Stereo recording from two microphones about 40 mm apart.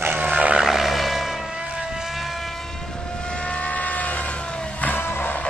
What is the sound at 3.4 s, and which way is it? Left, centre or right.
Vehicle, left.